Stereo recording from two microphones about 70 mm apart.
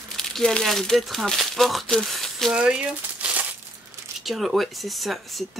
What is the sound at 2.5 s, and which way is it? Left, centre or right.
Speech, centre.